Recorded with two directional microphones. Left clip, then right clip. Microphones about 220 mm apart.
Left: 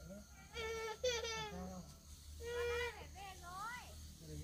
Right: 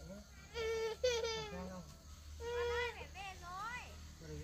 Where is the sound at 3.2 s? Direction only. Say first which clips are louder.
Right 2 dB; 50° right (ahead or behind).